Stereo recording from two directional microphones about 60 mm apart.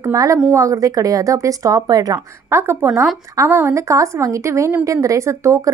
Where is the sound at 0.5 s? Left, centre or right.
Right.